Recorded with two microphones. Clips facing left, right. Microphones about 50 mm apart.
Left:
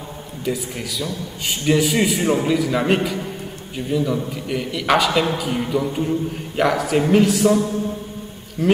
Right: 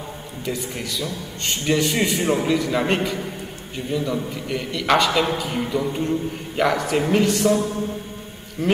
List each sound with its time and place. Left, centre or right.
0.5 s a man's voice: centre
8.6 s speech: centre